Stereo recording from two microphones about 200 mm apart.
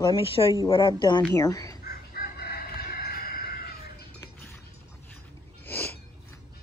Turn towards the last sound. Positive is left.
turn(degrees=10)  # may be behind; listen again after turning